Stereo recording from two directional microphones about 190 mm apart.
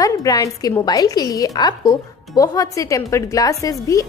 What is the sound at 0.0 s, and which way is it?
A woman's voice, 20° left (ahead or behind).